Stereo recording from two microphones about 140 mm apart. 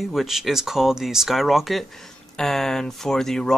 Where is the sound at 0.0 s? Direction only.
Centre (ahead or behind).